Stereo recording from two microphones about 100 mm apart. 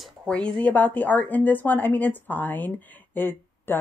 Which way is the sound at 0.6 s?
15° left (ahead or behind).